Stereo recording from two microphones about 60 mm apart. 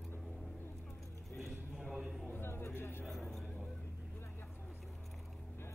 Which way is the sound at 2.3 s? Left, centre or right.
Left.